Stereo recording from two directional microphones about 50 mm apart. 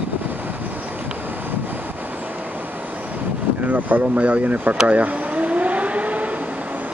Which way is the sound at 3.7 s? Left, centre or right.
Right.